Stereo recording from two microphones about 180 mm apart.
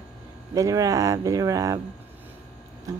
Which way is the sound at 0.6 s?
20° right (ahead or behind).